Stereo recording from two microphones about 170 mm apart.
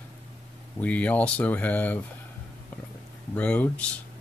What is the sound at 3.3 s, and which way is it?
Speech, 10° left (ahead or behind).